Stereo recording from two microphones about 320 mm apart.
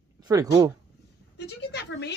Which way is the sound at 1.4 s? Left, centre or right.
Left.